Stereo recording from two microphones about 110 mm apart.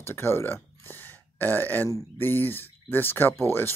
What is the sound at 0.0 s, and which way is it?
Speech, 20° left (ahead or behind).